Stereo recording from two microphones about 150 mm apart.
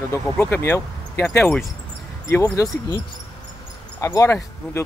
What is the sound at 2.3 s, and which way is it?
Speech, 20° left (ahead or behind).